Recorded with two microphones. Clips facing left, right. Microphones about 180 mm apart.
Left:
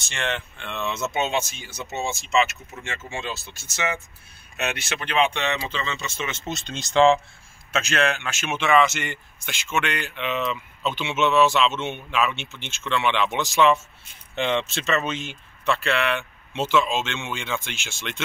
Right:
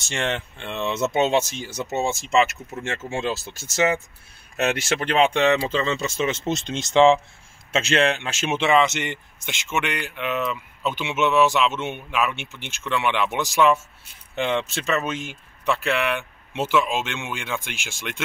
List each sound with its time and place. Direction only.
0.1 s speech: 35° right (ahead or behind); by 18.2 s 10° right (ahead or behind)